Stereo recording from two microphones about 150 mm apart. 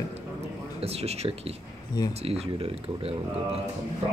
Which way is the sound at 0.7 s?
40° right (ahead or behind).